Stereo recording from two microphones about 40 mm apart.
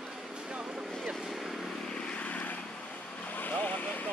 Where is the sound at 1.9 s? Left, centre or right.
Left.